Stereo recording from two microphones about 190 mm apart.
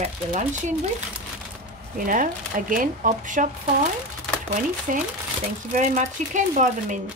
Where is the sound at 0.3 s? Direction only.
40° right (ahead or behind).